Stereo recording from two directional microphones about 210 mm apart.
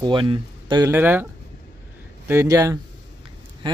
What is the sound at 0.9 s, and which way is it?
Speech, 10° right (ahead or behind).